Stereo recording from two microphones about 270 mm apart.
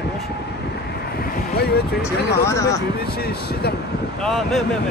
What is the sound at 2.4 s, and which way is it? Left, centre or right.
Speech, centre.